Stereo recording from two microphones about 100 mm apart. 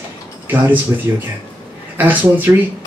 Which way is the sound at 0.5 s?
20° right (ahead or behind).